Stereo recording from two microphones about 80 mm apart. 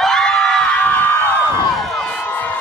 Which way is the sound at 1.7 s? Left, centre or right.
Centre.